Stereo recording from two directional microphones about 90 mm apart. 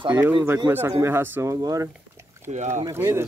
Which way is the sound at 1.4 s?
40° right (ahead or behind).